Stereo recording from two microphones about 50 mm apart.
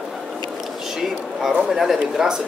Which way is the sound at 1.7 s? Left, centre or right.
Centre.